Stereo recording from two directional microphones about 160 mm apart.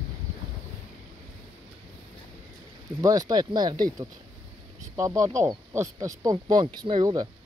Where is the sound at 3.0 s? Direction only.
25° right (ahead or behind).